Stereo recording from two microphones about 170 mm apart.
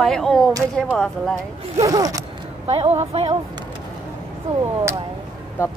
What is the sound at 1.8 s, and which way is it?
Speech, 20° right (ahead or behind).